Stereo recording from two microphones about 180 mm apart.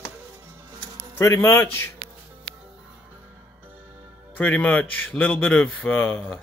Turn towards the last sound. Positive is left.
turn(degrees=10)  # may be behind; listen again after turning